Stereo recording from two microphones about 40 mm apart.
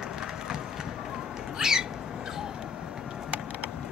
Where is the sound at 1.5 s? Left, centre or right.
Centre.